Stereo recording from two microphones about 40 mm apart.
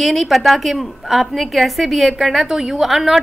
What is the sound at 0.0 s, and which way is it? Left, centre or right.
A woman's voice, centre.